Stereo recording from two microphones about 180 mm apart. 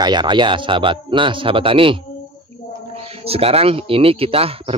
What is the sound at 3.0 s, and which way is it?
Speech, 35° right (ahead or behind).